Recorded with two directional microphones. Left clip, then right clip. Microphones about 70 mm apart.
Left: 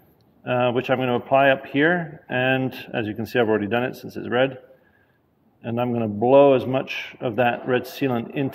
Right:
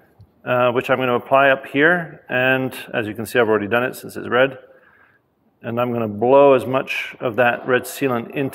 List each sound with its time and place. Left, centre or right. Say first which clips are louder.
0.4 s a man's voice: right 4 dB; right
5.6 s a man's voice: right 3 dB; right